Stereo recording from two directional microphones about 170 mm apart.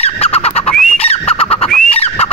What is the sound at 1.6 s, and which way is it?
Fowl, 5° left (ahead or behind).